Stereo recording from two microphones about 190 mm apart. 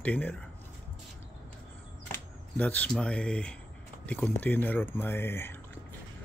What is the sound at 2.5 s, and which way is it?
Speech, 10° left (ahead or behind).